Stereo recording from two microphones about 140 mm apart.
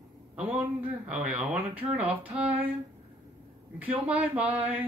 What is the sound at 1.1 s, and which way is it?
Speech, 10° right (ahead or behind).